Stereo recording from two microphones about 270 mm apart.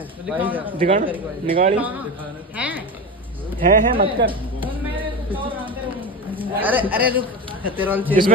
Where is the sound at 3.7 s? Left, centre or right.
Right.